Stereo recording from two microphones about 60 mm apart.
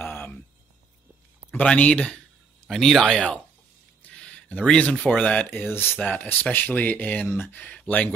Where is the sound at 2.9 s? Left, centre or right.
Centre.